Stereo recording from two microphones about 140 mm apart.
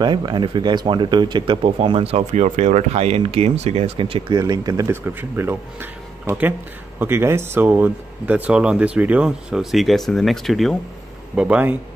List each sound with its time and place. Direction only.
0.0 s speech: 30° right (ahead or behind); by 10.8 s centre (ahead or behind)
11.3 s speech: 10° right (ahead or behind)